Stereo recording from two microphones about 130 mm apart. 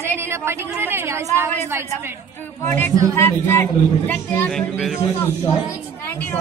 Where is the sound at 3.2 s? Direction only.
15° left (ahead or behind).